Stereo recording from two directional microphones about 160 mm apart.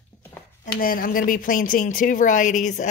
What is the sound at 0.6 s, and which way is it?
A woman's voice, 65° left (ahead or behind).